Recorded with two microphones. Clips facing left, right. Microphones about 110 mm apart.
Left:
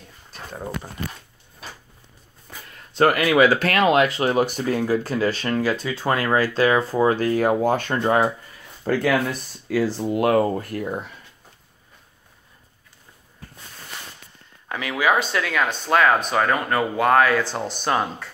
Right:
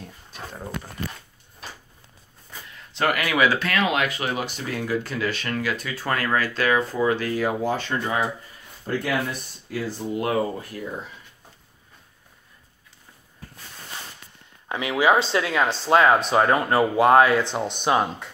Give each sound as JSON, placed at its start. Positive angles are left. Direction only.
{"t": 2.9, "sound": "speech", "side_deg": 40}
{"t": 8.9, "sound": "speech", "side_deg": 90}
{"t": 14.7, "sound": "speech", "side_deg": -25}